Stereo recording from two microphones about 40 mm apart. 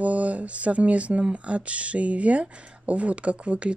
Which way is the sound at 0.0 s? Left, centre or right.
Right.